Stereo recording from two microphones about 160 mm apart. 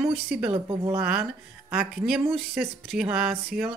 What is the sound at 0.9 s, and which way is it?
Speech, 10° right (ahead or behind).